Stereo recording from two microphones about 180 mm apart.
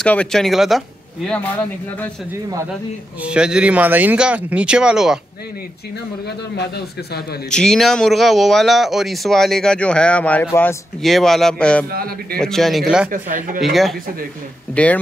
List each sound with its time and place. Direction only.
0.0 s speech: 5° left (ahead or behind)
3.3 s speech: 5° right (ahead or behind)
7.5 s speech: 5° left (ahead or behind)
11.0 s speech: centre (ahead or behind)
11.9 s a man's voice: 55° right (ahead or behind)
12.4 s speech: centre (ahead or behind)
13.1 s speech: 50° right (ahead or behind)
13.6 s speech: centre (ahead or behind)